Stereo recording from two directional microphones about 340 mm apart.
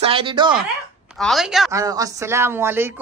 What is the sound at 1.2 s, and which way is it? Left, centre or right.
A woman's voice, centre.